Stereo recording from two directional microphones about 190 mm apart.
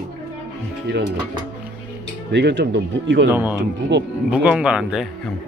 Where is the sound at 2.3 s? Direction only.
60° right (ahead or behind).